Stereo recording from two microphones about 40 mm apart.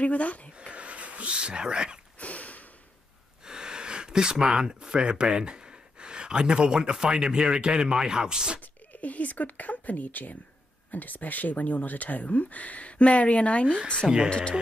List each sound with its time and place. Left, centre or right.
0.0 s speech: left
0.6 s a sound: right
1.3 s speech: right
2.1 s a sound: left
3.4 s speech: centre
8.5 s speech: left
14.0 s speech: centre